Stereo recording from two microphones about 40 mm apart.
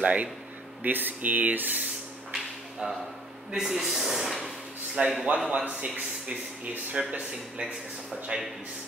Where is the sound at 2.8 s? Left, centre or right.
Right.